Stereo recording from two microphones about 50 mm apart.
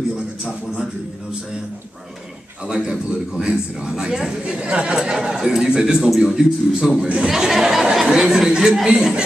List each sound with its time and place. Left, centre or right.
2.7 s a man's voice: centre
4.9 s a man's voice: centre